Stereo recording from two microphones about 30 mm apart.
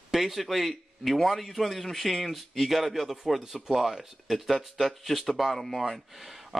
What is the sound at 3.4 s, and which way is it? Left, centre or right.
Speech, centre.